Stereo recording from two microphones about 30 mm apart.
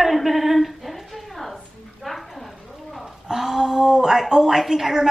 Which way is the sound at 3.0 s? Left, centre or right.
Centre.